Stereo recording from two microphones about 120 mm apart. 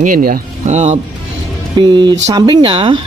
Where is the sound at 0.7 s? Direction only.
70° right (ahead or behind).